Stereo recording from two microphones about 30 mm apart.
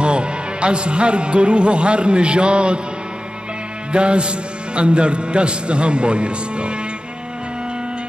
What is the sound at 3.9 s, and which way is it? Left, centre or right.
A man's voice, right.